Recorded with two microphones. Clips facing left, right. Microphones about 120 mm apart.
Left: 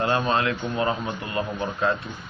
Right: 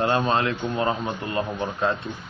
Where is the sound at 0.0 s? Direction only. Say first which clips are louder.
Right 1 dB; 20° right (ahead or behind).